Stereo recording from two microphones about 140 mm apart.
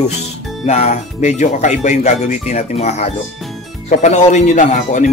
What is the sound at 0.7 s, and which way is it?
A man's voice, 50° left (ahead or behind).